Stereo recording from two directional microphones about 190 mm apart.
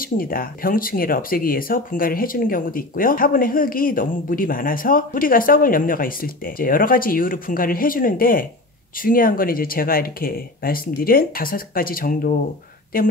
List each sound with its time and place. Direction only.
0.2 s speech: 50° left (ahead or behind)